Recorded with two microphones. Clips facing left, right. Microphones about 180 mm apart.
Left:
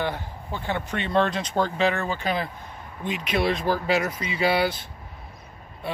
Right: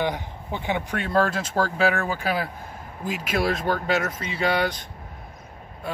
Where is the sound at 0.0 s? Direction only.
15° right (ahead or behind); by 4.8 s 5° left (ahead or behind).